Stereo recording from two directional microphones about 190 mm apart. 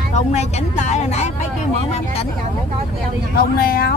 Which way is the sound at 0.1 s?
35° left (ahead or behind).